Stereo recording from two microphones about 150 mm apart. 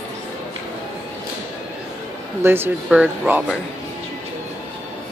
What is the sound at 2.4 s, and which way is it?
Speech, 15° right (ahead or behind).